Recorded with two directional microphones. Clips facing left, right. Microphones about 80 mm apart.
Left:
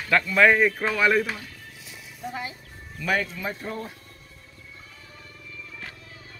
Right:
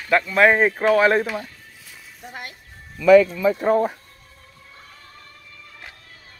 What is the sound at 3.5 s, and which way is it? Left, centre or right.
Speech, right.